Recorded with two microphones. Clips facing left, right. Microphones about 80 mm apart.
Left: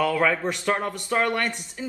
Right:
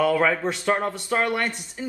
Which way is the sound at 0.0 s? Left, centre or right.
Centre.